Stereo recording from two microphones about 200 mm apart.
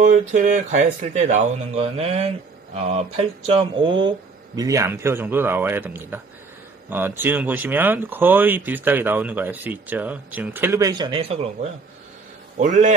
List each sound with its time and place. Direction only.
0.0 s speech: 40° right (ahead or behind)
12.5 s speech: 40° right (ahead or behind)